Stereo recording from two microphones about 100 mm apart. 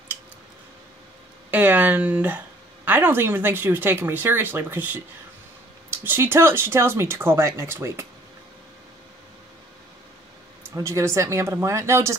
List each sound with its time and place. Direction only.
1.5 s speech: 15° right (ahead or behind)
10.6 s speech: 25° right (ahead or behind)